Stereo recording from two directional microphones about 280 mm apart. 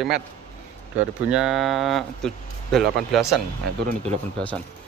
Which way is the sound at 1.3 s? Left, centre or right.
Centre.